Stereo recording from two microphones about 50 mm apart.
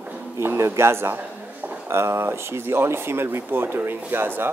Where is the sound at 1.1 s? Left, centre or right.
Right.